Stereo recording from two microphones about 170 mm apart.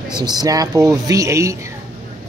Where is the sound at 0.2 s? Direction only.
25° right (ahead or behind).